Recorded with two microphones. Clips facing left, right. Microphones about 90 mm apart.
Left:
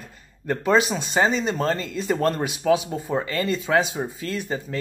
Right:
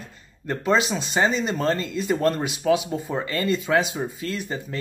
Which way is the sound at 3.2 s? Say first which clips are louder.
Right 1 dB; 40° right (ahead or behind).